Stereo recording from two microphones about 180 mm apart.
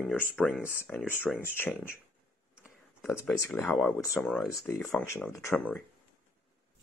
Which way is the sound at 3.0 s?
5° left (ahead or behind).